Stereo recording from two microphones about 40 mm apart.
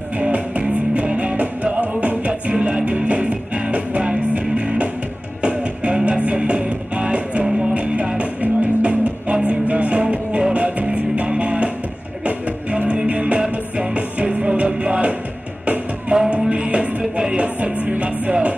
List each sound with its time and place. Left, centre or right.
0.2 s music: right
17.4 s music: right